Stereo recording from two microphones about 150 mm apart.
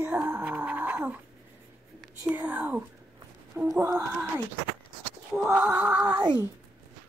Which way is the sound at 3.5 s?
15° right (ahead or behind).